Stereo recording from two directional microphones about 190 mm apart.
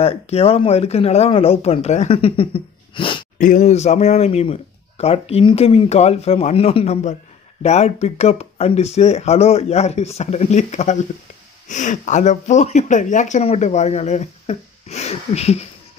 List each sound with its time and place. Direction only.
0.0 s speech: 30° left (ahead or behind)
3.3 s speech: 40° left (ahead or behind)